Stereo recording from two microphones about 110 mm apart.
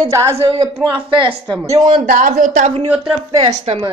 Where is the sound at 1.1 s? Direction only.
50° right (ahead or behind).